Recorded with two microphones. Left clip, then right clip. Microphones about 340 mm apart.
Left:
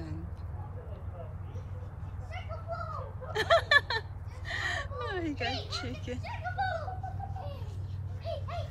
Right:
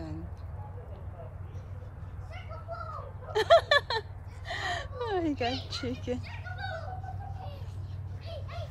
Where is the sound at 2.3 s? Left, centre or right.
Centre.